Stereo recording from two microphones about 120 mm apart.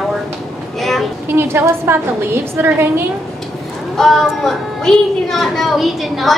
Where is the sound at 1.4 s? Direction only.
20° right (ahead or behind).